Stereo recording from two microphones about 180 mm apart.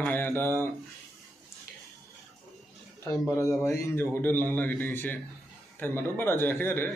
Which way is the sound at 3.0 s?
15° left (ahead or behind).